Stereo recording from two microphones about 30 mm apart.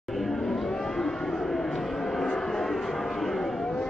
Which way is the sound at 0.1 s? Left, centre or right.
Centre.